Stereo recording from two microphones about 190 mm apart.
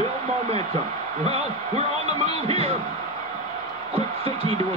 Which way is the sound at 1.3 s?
35° right (ahead or behind).